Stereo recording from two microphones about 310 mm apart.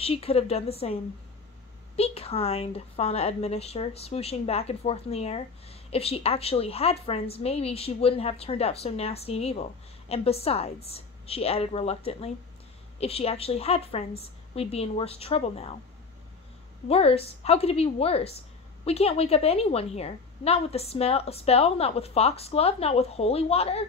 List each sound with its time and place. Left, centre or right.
0.0 s speech: centre
2.0 s speech: centre
16.9 s speech: centre